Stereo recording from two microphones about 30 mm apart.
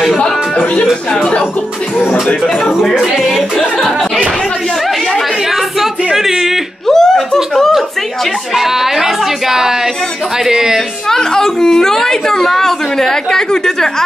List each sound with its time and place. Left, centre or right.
2.4 s speech: centre
6.1 s a sound: centre
6.9 s chuckle: centre
8.5 s speech: centre
11.1 s a woman's voice: centre